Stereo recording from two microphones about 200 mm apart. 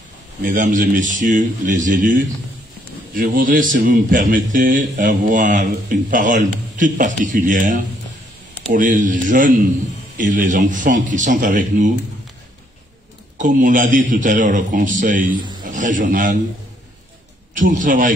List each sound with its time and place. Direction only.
0.4 s a man's voice: 40° right (ahead or behind)
13.4 s speech: 40° right (ahead or behind)
15.3 s a man's voice: 20° right (ahead or behind)
15.6 s a man's voice: 40° right (ahead or behind)
17.6 s speech: 40° right (ahead or behind)